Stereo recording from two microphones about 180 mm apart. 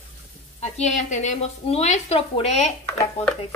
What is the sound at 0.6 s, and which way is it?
Speech, 40° left (ahead or behind).